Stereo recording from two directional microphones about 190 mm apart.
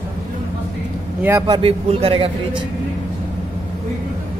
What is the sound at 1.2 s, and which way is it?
Speech, 10° right (ahead or behind).